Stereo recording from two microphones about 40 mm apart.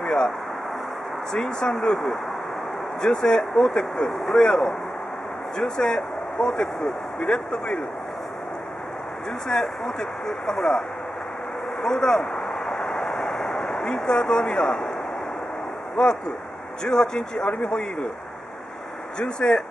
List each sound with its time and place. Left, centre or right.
0.0 s a sound: left
1.3 s speech: centre
3.0 s speech: left
9.5 s speech: centre
11.8 s speech: centre
12.6 s vehicle: centre
13.5 s speech: left
16.8 s speech: centre
19.1 s speech: centre